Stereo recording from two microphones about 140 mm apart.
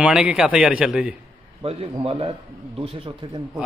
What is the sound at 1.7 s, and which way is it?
Speech, 40° right (ahead or behind).